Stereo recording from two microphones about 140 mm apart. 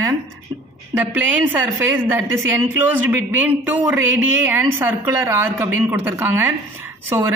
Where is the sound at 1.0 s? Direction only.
10° right (ahead or behind).